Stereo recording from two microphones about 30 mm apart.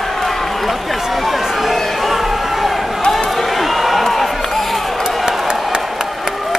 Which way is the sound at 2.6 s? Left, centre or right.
Centre.